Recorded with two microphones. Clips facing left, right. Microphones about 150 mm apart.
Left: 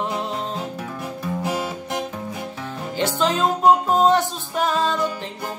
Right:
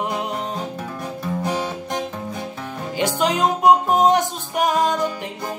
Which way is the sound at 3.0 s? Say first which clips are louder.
Right 1 dB; 15° right (ahead or behind).